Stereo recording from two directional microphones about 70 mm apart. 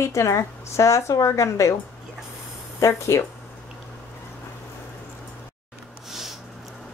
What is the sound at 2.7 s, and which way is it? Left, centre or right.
Speech, left.